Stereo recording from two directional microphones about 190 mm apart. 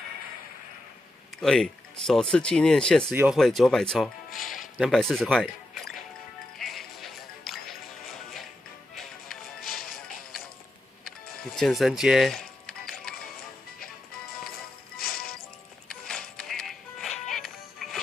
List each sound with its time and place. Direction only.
1.4 s speech: 5° left (ahead or behind)
3.1 s speech: 10° right (ahead or behind)
3.3 s speech: centre (ahead or behind)
6.6 s music: centre (ahead or behind)
9.8 s music: 50° left (ahead or behind)
11.5 s speech: centre (ahead or behind)
15.0 s music: 50° left (ahead or behind)
15.9 s music: 5° left (ahead or behind)